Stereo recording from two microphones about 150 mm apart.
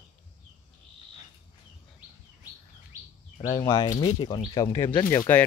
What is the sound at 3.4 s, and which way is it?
Speech, 20° left (ahead or behind).